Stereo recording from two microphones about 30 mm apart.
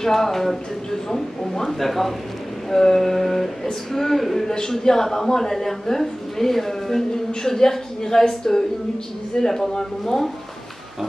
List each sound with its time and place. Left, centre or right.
0.0 s a woman's voice: centre